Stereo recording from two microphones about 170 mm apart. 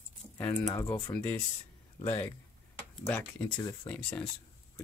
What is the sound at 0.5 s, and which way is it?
Speech, 20° left (ahead or behind).